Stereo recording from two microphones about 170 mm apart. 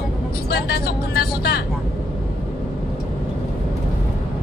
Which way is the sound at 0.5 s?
70° left (ahead or behind).